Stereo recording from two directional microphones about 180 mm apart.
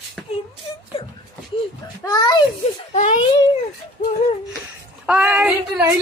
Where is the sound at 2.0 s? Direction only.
20° left (ahead or behind).